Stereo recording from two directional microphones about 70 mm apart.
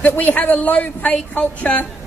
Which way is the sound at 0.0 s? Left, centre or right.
Left.